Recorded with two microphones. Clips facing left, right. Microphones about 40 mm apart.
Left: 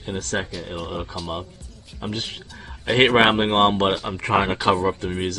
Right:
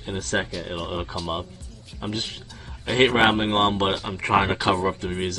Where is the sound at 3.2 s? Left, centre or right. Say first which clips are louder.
Left 2 dB; left.